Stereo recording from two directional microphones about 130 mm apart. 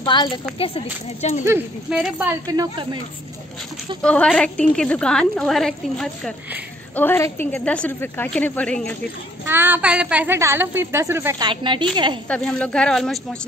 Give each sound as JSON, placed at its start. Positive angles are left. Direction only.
{"t": 0.0, "sound": "speech", "side_deg": 35}
{"t": 1.2, "sound": "speech", "side_deg": 60}
{"t": 1.9, "sound": "a woman's voice", "side_deg": -5}
{"t": 2.4, "sound": "speech", "side_deg": -30}
{"t": 4.0, "sound": "a woman's voice", "side_deg": 5}
{"t": 7.0, "sound": "a woman's voice", "side_deg": 20}
{"t": 9.5, "sound": "a woman's voice", "side_deg": -15}
{"t": 11.4, "sound": "a woman's voice", "side_deg": -40}
{"t": 12.3, "sound": "a woman's voice", "side_deg": 10}